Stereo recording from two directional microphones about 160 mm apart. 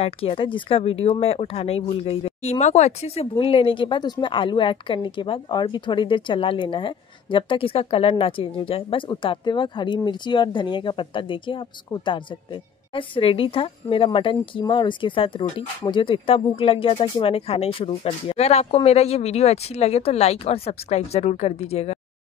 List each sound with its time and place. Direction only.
0.0 s speech: 35° left (ahead or behind)